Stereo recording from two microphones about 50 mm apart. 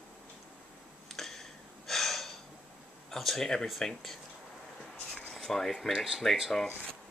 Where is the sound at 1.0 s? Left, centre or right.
Centre.